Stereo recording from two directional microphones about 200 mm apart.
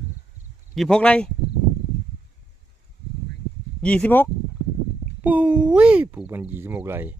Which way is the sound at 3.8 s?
5° left (ahead or behind).